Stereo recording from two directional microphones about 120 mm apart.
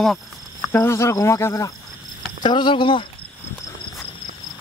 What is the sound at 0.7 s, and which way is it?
Speech, 20° left (ahead or behind).